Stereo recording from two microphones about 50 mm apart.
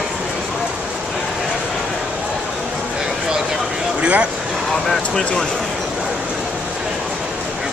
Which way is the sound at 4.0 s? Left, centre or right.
Right.